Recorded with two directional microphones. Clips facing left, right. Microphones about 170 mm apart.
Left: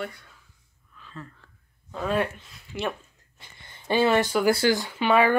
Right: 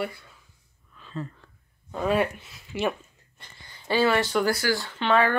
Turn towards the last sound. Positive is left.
turn(degrees=10)  # may be behind; listen again after turning